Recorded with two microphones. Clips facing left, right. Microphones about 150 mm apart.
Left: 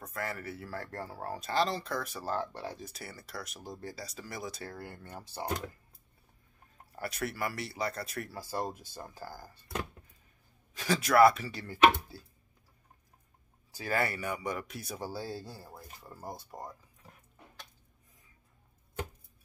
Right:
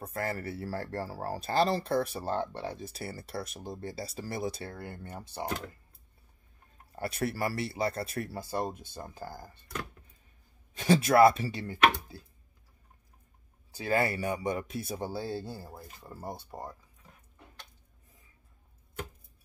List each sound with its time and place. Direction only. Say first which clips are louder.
0.0 s speech: right 4 dB; 30° right (ahead or behind)
7.0 s speech: right 4 dB; 30° right (ahead or behind)
10.8 s speech: right 2 dB; 25° right (ahead or behind)
13.7 s speech: right 3 dB; 25° right (ahead or behind)